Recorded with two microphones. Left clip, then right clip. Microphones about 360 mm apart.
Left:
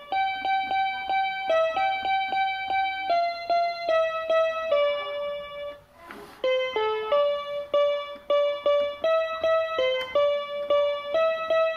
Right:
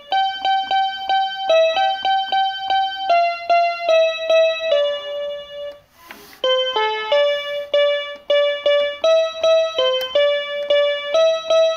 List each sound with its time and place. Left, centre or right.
0.1 s music: right
6.4 s music: right